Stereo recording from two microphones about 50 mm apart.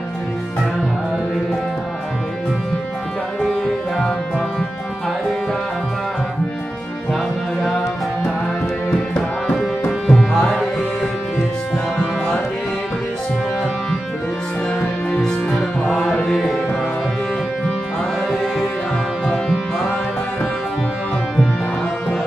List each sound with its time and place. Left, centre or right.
9.5 s music: centre
14.8 s music: centre
15.9 s music: centre
19.2 s music: centre